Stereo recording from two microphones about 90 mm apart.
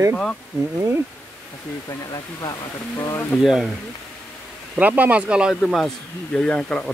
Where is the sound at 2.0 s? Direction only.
45° left (ahead or behind).